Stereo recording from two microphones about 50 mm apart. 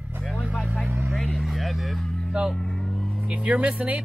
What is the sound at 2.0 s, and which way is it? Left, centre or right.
Music, centre.